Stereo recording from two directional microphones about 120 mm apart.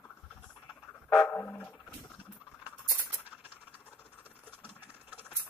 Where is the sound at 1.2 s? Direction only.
15° left (ahead or behind).